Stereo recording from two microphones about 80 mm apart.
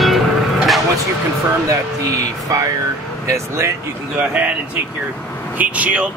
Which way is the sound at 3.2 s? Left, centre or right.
Right.